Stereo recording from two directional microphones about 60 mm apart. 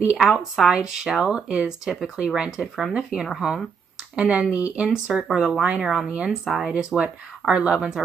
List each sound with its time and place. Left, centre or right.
0.2 s speech: centre
4.1 s speech: right
5.0 s speech: centre